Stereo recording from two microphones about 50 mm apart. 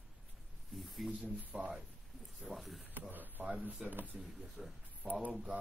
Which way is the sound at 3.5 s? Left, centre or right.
Right.